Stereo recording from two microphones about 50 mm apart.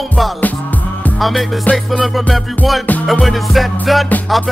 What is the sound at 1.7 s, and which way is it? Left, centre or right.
Music, left.